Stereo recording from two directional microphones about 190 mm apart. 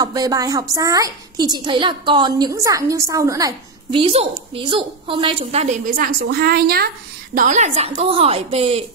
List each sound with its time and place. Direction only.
0.0 s a woman's voice: 20° right (ahead or behind)
5.9 s a woman's voice: 50° right (ahead or behind)
7.3 s a woman's voice: 40° right (ahead or behind)